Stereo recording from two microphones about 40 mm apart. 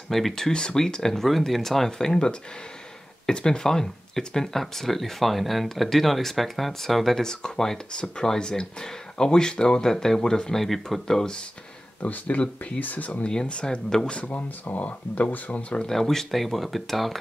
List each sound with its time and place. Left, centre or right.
0.1 s speech: centre
12.0 s speech: left
13.3 s speech: left
14.2 s speech: left
15.9 s speech: centre